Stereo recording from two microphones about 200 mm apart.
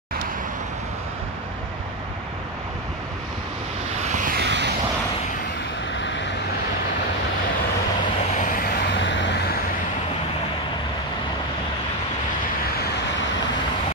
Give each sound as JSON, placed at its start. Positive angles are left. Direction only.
{"t": 4.0, "sound": "vehicle", "side_deg": -40}
{"t": 6.0, "sound": "vehicle", "side_deg": 65}
{"t": 8.4, "sound": "vehicle", "side_deg": 45}